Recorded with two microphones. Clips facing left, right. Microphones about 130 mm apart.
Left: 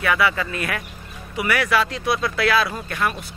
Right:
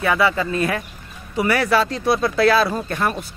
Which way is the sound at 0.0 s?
25° right (ahead or behind).